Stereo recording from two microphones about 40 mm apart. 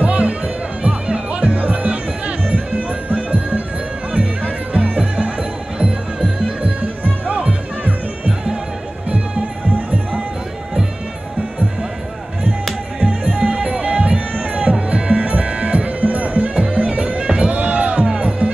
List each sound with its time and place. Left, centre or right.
0.0 s music: right
7.2 s music: right
13.0 s music: right
14.6 s music: right